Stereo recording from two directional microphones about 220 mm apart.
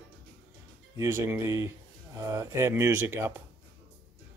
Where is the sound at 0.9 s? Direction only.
15° right (ahead or behind).